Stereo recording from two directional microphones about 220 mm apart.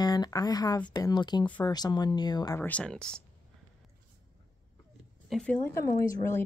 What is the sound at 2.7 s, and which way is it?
Speech, 5° left (ahead or behind).